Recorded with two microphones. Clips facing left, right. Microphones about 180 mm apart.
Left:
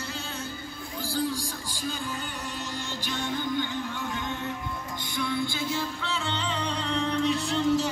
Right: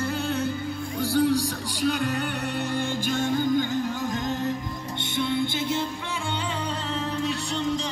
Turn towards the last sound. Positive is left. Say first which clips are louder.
# left 3 dB
turn(degrees=5)  # may be behind; listen again after turning